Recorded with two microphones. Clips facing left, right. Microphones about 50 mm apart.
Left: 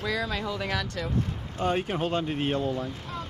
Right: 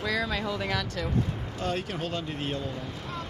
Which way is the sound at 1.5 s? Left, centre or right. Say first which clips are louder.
Left 5 dB; left.